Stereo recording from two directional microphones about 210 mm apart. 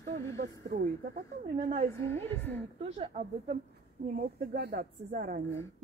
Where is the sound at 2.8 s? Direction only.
30° right (ahead or behind).